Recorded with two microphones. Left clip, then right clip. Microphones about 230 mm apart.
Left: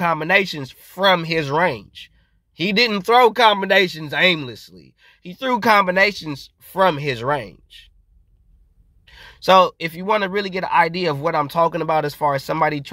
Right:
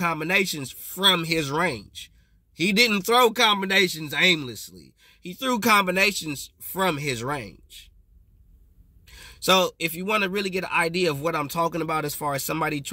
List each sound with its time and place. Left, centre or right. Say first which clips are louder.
0.0 s speech: left 6 dB; centre
9.0 s speech: left 5 dB; centre